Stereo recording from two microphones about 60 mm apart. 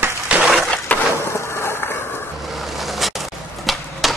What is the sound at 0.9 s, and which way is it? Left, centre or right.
Wood, left.